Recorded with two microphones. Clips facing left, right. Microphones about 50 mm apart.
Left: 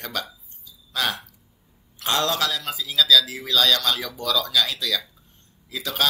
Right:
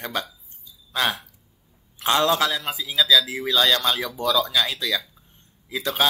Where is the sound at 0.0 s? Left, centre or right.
Centre.